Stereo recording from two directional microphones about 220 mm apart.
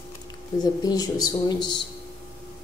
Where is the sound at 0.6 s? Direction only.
15° left (ahead or behind).